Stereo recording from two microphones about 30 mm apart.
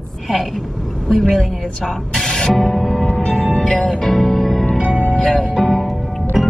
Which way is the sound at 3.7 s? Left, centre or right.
Left.